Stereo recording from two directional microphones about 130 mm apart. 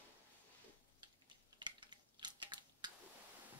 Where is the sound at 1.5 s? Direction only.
35° right (ahead or behind).